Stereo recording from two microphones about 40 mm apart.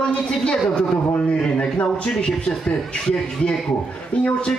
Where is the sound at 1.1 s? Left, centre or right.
Left.